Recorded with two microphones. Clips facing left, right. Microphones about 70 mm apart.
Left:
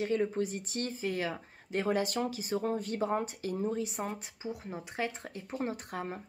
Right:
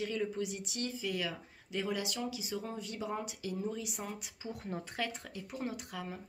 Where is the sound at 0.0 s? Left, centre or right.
Left.